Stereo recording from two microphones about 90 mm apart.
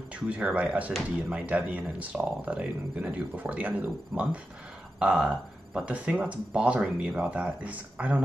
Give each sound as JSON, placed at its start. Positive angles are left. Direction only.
{"t": 0.1, "sound": "speech", "side_deg": -15}